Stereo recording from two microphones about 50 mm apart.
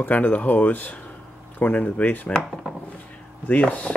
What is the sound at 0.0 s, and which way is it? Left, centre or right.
Speech, left.